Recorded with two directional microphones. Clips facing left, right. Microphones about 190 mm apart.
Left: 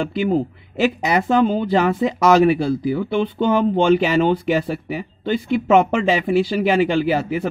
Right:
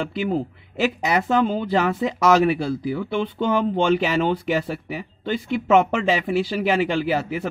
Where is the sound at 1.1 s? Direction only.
30° left (ahead or behind).